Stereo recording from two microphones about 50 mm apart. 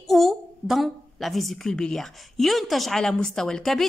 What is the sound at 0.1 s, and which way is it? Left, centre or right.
A woman's voice, centre.